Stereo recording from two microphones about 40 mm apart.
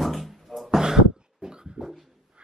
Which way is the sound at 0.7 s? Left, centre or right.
Centre.